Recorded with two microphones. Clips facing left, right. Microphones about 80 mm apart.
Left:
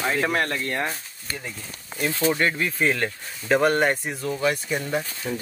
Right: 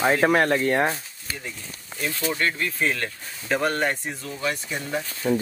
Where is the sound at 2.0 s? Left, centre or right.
Left.